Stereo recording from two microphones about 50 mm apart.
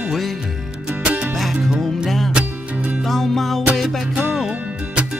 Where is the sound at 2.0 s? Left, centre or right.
Centre.